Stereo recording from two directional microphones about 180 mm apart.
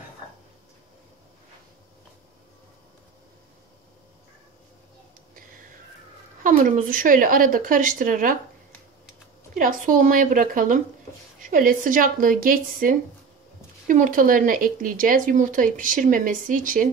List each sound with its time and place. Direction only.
5.3 s whispering: 50° right (ahead or behind)
6.4 s speech: 50° right (ahead or behind)
9.6 s speech: 50° right (ahead or behind)